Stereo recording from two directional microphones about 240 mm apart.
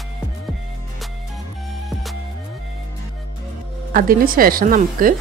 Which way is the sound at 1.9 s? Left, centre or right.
Centre.